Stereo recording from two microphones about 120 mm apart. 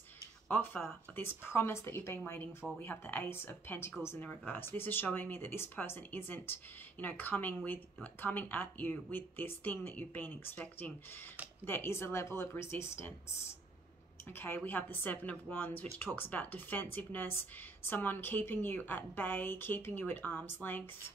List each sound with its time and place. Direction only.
0.8 s a woman's voice: 20° left (ahead or behind)
14.3 s speech: 20° left (ahead or behind)